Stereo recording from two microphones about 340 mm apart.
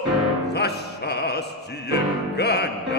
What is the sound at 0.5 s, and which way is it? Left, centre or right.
Music, left.